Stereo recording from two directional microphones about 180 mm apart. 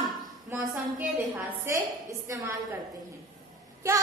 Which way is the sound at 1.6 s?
15° right (ahead or behind).